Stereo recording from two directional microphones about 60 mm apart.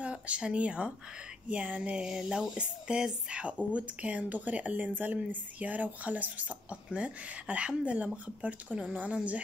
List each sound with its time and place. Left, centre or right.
0.0 s speech: centre